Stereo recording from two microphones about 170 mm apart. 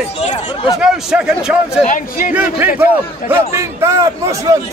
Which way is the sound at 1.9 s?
50° left (ahead or behind).